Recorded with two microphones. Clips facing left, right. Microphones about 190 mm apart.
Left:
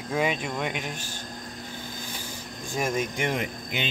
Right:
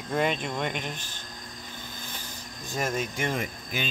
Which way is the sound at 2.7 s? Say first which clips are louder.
Left 2 dB; 10° left (ahead or behind).